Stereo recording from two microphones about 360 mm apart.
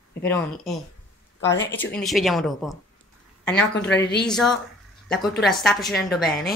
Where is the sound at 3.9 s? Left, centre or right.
Left.